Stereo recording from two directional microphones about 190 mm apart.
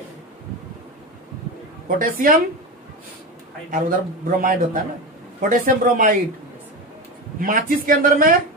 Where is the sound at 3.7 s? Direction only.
45° right (ahead or behind).